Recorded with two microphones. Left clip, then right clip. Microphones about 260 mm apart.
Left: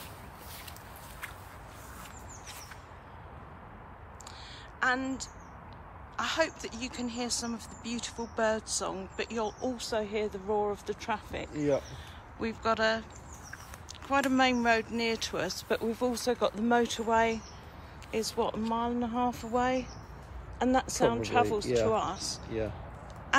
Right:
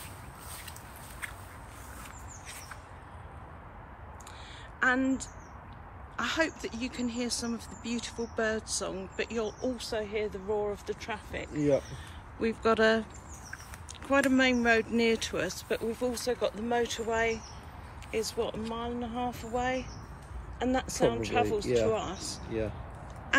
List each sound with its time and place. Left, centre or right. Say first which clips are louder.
4.7 s speech: right 2 dB; centre; by 11.1 s left
12.4 s speech: right 3 dB; centre
14.0 s speech: right 1 dB; centre
18.9 s speech: left 3 dB; left
19.1 s speech: left 3 dB; left
21.6 s speech: right 1 dB; left
21.9 s speech: left 3 dB; centre
22.5 s speech: right 1 dB; left